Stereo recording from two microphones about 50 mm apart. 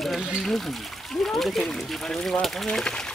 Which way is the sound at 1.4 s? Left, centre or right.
Centre.